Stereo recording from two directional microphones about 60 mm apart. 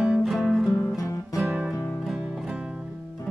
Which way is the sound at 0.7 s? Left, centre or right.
Left.